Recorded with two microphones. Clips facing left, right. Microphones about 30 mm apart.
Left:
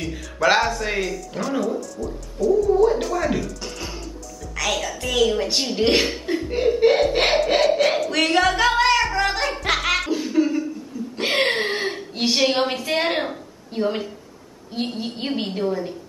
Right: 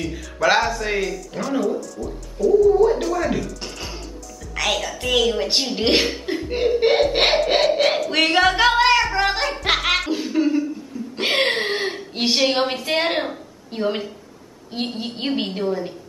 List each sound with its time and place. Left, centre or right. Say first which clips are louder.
0.0 s a woman's voice: even; centre
9.1 s music: right 1 dB; right
9.4 s speech: right 1 dB; centre
9.8 s a sound: right 1 dB; centre
11.1 s a woman's voice: right 1 dB; centre